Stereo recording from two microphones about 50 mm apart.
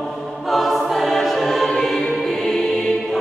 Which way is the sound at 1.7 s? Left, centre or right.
Centre.